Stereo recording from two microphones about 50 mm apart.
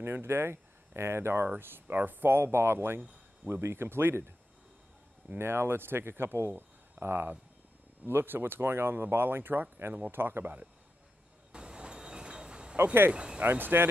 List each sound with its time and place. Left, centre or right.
0.0 s speech: right
1.6 s speech: right
5.4 s speech: right
11.5 s a sound: centre
13.1 s speech: centre
13.4 s speech: right